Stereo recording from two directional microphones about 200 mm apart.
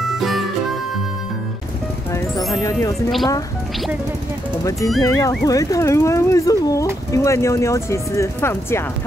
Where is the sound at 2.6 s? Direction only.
15° left (ahead or behind).